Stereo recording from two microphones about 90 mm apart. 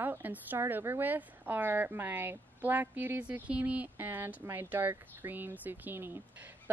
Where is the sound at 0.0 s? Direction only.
20° right (ahead or behind).